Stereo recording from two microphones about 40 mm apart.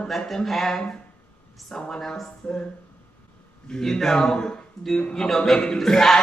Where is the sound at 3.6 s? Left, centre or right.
Centre.